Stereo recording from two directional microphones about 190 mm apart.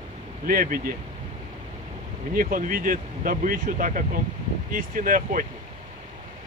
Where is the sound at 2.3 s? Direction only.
45° right (ahead or behind).